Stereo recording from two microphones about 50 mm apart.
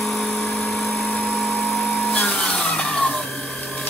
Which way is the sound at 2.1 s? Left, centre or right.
Left.